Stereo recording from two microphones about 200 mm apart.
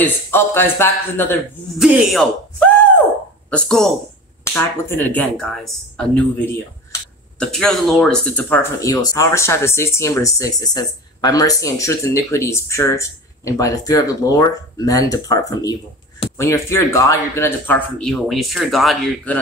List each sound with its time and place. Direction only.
0.0 s speech: 10° left (ahead or behind)
7.3 s speech: 5° left (ahead or behind)
8.8 s speech: 20° left (ahead or behind); by 19.3 s centre (ahead or behind)